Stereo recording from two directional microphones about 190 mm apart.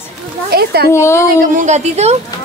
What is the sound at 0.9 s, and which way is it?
Speech, 15° left (ahead or behind).